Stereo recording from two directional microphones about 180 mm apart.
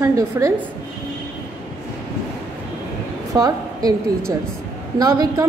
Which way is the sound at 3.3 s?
20° right (ahead or behind).